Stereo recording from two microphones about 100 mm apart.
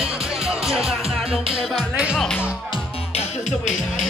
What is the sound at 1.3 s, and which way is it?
Music, 65° right (ahead or behind).